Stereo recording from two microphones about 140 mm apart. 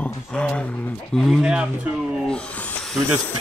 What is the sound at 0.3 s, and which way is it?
Speech, 10° left (ahead or behind).